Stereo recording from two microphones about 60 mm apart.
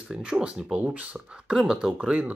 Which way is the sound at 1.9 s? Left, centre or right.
Right.